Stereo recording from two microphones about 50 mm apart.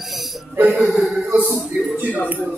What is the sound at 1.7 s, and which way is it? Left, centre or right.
Speech, right.